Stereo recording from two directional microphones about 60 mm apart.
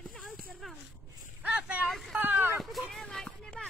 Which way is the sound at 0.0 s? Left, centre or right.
Centre.